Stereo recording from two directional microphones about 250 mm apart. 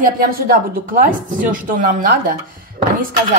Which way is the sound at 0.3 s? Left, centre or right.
Right.